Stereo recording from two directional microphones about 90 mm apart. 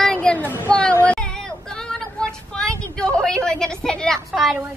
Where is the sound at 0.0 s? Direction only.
10° left (ahead or behind).